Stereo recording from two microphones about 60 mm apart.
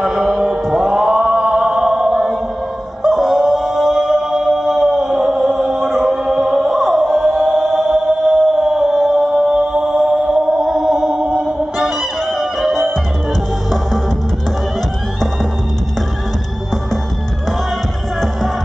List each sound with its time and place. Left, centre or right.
0.0 s chant: centre
3.0 s music: centre
11.8 s music: centre